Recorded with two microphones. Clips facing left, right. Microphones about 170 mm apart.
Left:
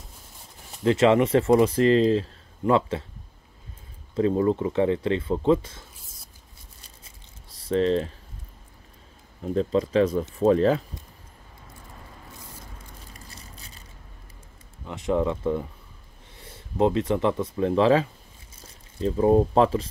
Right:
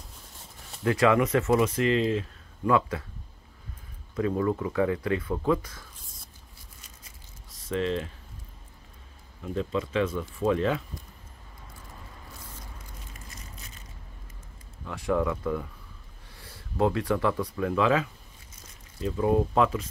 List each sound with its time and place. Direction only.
0.7 s speech: 25° left (ahead or behind)
4.1 s speech: 30° left (ahead or behind)
7.4 s typing: 35° left (ahead or behind)
9.4 s speech: 35° left (ahead or behind)
13.1 s vehicle: 35° left (ahead or behind)
14.9 s speech: 20° left (ahead or behind)